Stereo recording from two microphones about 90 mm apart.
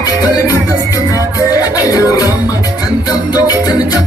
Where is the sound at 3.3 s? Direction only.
45° left (ahead or behind).